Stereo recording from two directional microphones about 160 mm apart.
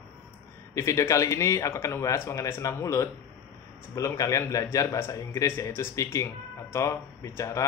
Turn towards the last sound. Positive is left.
turn(degrees=20)  # may be behind; listen again after turning